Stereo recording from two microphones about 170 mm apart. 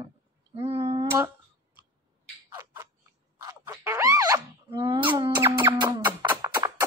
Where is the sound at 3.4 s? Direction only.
15° right (ahead or behind).